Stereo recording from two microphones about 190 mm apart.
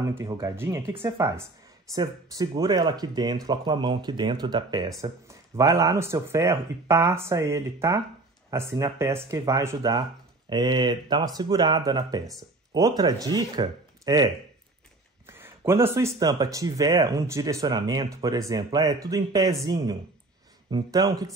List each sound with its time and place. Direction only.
0.2 s speech: 15° right (ahead or behind)